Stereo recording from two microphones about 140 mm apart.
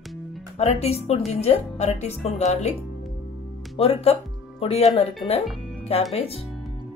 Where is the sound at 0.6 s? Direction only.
50° left (ahead or behind).